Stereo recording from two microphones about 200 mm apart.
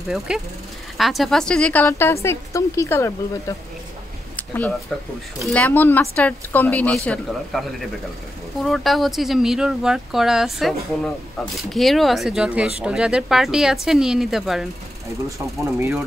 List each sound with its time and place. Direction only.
0.3 s speech: 5° right (ahead or behind)
15.1 s speech: 15° right (ahead or behind)